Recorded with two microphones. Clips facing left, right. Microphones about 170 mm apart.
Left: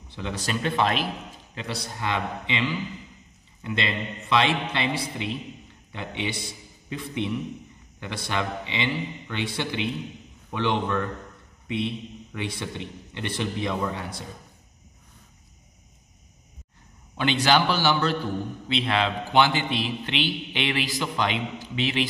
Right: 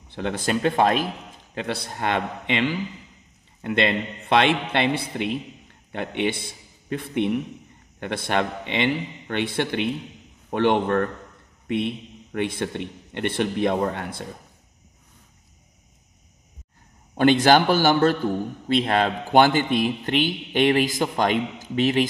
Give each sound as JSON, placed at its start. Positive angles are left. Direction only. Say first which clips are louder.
{"t": 0.1, "sound": "a man's voice", "louder": "right 5 dB", "side_deg": -55}
{"t": 17.2, "sound": "a man's voice", "louder": "right 6 dB", "side_deg": -50}